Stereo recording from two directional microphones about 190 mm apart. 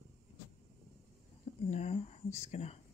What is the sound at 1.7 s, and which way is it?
Speech, 35° left (ahead or behind).